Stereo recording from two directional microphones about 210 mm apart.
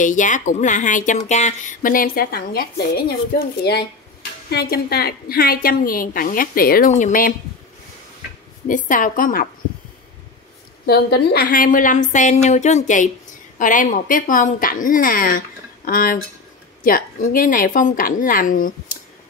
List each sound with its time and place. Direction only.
0.0 s a woman's voice: 35° left (ahead or behind)
8.6 s speech: 40° left (ahead or behind)
10.9 s speech: 50° left (ahead or behind)